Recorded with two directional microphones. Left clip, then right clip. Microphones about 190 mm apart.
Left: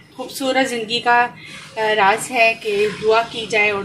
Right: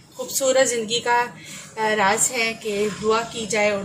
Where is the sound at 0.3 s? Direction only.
15° left (ahead or behind).